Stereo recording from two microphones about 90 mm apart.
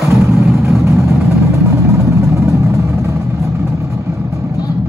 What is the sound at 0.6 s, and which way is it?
Vehicle, 35° right (ahead or behind).